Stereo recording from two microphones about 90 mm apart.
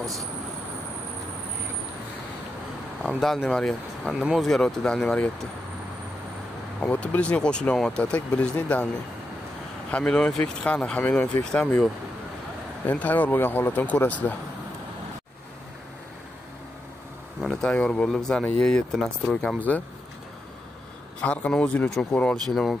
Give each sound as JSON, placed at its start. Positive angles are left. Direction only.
{"t": 3.0, "sound": "speech", "side_deg": 0}
{"t": 4.2, "sound": "speech", "side_deg": -10}
{"t": 4.5, "sound": "speech", "side_deg": 10}
{"t": 6.8, "sound": "speech", "side_deg": 15}
{"t": 9.8, "sound": "speech", "side_deg": 10}
{"t": 12.8, "sound": "speech", "side_deg": 15}
{"t": 17.4, "sound": "a sound", "side_deg": 5}
{"t": 17.6, "sound": "speech", "side_deg": 15}
{"t": 21.2, "sound": "speech", "side_deg": 15}
{"t": 22.5, "sound": "speech", "side_deg": 0}